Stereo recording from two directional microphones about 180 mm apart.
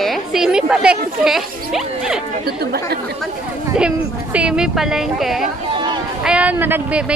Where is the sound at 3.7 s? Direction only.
5° right (ahead or behind).